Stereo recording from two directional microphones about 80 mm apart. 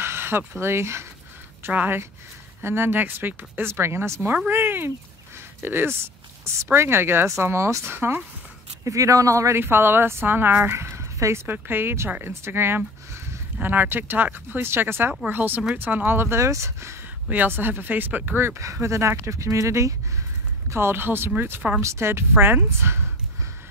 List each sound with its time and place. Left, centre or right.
0.0 s speech: right
8.8 s speech: right
9.6 s speech: right
11.4 s speech: right
17.3 s speech: right
20.7 s speech: right
21.8 s speech: right